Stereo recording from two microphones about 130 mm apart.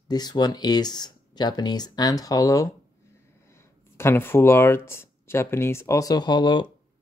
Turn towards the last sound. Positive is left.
turn(degrees=35)  # may be behind; listen again after turning